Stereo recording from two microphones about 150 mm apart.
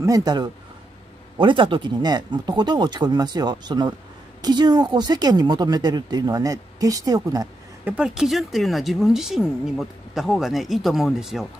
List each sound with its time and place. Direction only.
0.0 s speech: 25° right (ahead or behind)
7.8 s speech: 10° right (ahead or behind)